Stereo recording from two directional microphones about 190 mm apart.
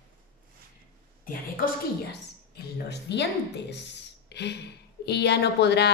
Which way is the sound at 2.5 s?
65° left (ahead or behind).